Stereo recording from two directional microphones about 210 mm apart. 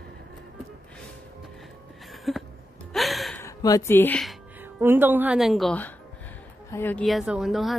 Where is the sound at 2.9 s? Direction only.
Centre (ahead or behind).